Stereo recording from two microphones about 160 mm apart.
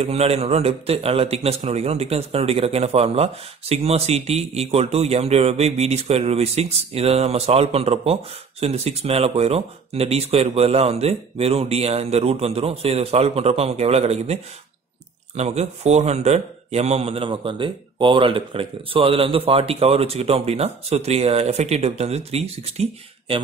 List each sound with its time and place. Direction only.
0.0 s a man's voice: 40° right (ahead or behind)